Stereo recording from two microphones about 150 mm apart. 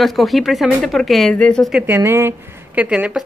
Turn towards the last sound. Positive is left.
turn(degrees=-10)  # may be behind; listen again after turning